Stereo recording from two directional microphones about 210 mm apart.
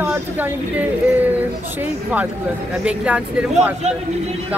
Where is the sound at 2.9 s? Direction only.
5° right (ahead or behind).